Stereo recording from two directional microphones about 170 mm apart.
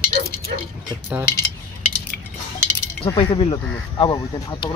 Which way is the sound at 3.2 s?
30° left (ahead or behind).